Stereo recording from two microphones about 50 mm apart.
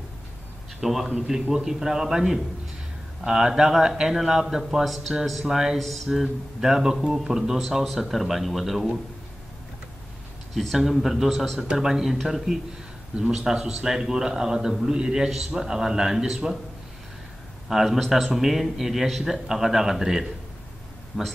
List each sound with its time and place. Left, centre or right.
0.7 s a man's voice: centre
5.4 s a man's voice: centre
10.5 s a man's voice: centre
11.6 s a man's voice: centre
17.6 s a man's voice: centre
21.1 s speech: centre